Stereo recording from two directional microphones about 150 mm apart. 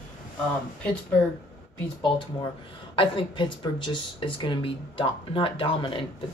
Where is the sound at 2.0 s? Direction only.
35° left (ahead or behind).